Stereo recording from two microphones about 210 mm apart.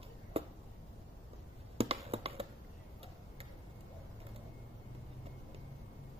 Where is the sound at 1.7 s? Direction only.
25° right (ahead or behind).